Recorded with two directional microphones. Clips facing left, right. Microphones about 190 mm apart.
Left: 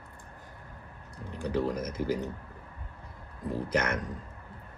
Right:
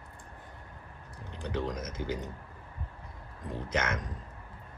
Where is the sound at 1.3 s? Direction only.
5° left (ahead or behind).